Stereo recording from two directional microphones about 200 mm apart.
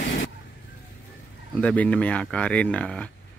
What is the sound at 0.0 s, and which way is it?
Vehicle, 70° left (ahead or behind).